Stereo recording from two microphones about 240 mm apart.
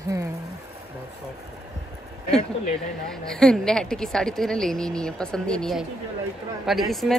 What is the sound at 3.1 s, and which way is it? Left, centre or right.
Speech, centre.